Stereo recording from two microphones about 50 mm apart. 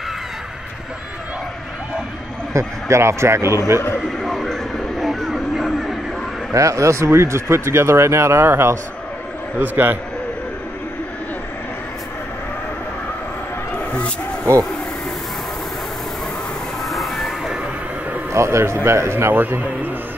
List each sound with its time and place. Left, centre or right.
2.5 s speech: right
4.2 s a sound: centre
6.5 s speech: right
9.6 s a man's voice: right
13.7 s a sound: left
16.8 s music: centre
18.3 s a man's voice: right
18.9 s speech: right
19.3 s a man's voice: right